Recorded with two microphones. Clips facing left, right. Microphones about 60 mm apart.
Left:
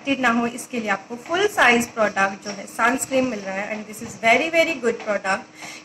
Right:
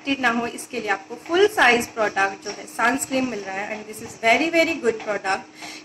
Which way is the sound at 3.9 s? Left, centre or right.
Centre.